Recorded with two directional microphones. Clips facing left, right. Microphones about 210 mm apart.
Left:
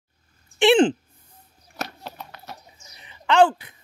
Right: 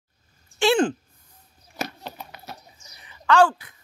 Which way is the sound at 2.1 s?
10° right (ahead or behind).